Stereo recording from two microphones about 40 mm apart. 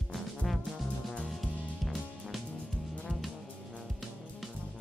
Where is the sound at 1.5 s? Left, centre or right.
Left.